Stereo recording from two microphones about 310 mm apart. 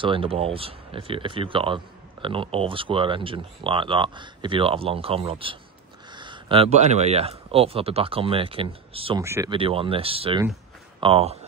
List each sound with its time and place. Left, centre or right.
0.0 s speech: centre